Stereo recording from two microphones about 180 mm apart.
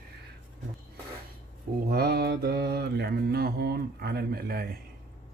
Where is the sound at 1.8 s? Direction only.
60° right (ahead or behind).